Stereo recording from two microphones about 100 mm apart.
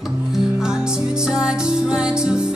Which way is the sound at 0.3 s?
5° right (ahead or behind).